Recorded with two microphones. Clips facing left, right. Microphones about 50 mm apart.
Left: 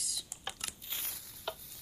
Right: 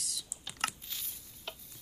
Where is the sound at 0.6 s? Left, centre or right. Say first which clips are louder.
Right 10 dB; right.